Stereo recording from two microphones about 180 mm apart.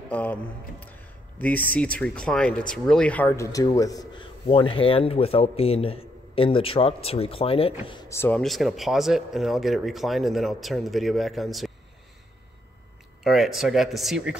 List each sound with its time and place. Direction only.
0.1 s speech: 10° left (ahead or behind); by 8.1 s 25° left (ahead or behind)
8.1 s speech: 15° left (ahead or behind)
8.4 s speech: centre (ahead or behind)
13.2 s speech: centre (ahead or behind)